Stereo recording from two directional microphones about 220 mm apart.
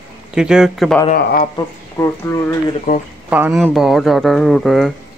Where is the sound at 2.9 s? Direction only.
40° left (ahead or behind).